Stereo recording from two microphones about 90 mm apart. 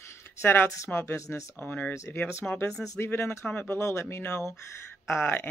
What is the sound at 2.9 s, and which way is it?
Speech, 25° left (ahead or behind).